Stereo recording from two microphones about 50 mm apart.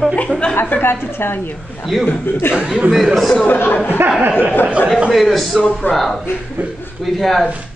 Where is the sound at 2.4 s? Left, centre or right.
Left.